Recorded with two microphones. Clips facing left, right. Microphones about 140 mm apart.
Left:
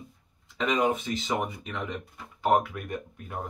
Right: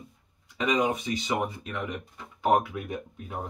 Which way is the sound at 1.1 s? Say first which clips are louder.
Right 1 dB; 10° right (ahead or behind).